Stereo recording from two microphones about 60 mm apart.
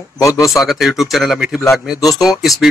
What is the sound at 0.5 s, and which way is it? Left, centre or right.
Speech, centre.